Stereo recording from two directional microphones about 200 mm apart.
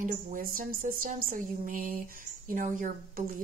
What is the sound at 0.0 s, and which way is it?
Speech, 45° right (ahead or behind).